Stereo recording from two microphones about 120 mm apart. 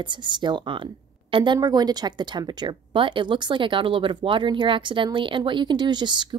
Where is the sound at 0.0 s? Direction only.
40° right (ahead or behind).